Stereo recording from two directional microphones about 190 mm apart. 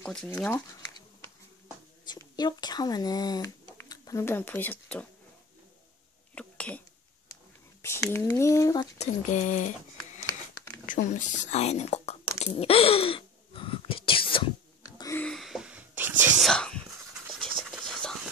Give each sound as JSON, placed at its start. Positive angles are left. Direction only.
{"t": 0.0, "sound": "speech", "side_deg": 5}
{"t": 2.0, "sound": "speech", "side_deg": 20}
{"t": 6.3, "sound": "a sound", "side_deg": 5}
{"t": 7.8, "sound": "speech", "side_deg": 15}
{"t": 8.9, "sound": "a woman's voice", "side_deg": 40}
{"t": 10.2, "sound": "crumpling", "side_deg": 15}
{"t": 10.9, "sound": "a woman's voice", "side_deg": 40}
{"t": 12.4, "sound": "a sound", "side_deg": 30}
{"t": 15.0, "sound": "a sound", "side_deg": 15}
{"t": 15.2, "sound": "whispering", "side_deg": 0}
{"t": 16.4, "sound": "whispering", "side_deg": 5}
{"t": 17.6, "sound": "a sound", "side_deg": 0}